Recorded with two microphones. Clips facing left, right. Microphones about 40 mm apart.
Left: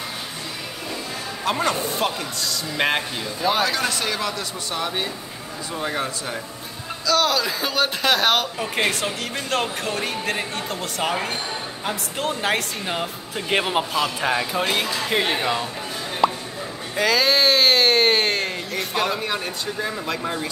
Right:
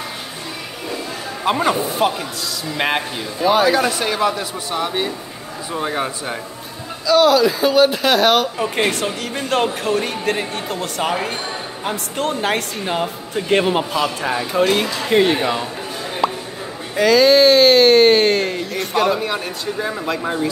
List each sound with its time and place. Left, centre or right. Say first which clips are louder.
1.4 s speech: right 5 dB; centre
3.4 s speech: right 7 dB; centre
7.1 s speech: right 7 dB; centre
16.2 s plop: even; centre
16.9 s speech: right 7 dB; centre